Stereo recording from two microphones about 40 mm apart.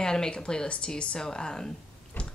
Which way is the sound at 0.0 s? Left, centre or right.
Centre.